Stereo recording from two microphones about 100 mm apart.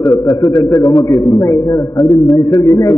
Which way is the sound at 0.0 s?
30° left (ahead or behind).